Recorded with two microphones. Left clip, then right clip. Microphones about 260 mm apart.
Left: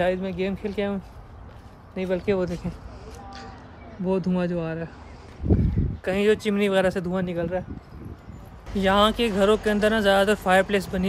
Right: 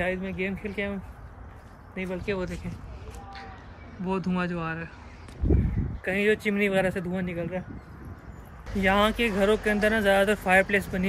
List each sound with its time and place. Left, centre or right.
0.0 s speech: centre
2.0 s speech: left
2.3 s speech: centre
4.0 s speech: centre
6.0 s speech: centre
8.7 s speech: centre